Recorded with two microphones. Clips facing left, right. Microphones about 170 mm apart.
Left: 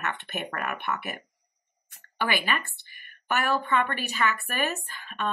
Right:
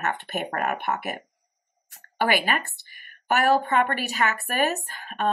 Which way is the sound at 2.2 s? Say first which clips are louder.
Right 5 dB; 45° right (ahead or behind).